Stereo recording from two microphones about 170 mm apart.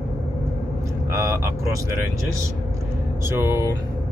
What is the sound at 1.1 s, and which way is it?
Speech, 15° right (ahead or behind).